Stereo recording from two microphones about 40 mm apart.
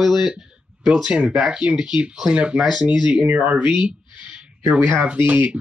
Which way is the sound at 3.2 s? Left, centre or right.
Right.